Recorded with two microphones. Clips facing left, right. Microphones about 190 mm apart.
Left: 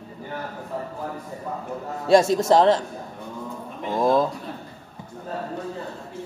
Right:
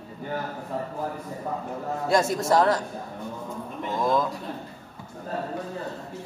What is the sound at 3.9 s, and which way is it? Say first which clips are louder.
Speech: left 4 dB; 25° left (ahead or behind).